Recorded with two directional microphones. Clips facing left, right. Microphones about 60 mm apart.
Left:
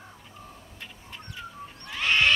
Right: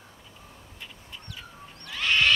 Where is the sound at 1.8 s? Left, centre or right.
Left.